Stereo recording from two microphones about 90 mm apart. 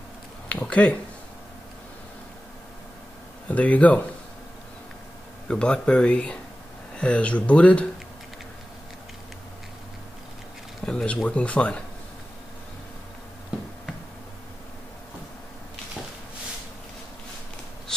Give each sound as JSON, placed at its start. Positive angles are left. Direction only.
{"t": 0.5, "sound": "speech", "side_deg": 15}
{"t": 3.4, "sound": "speech", "side_deg": 15}
{"t": 5.5, "sound": "speech", "side_deg": 10}
{"t": 10.9, "sound": "speech", "side_deg": 10}